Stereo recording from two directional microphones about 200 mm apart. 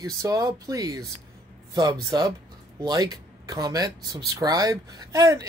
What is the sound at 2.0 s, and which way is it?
Speech, 20° right (ahead or behind).